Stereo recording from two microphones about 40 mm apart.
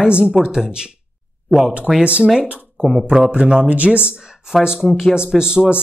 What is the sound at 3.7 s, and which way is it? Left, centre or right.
Speech, right.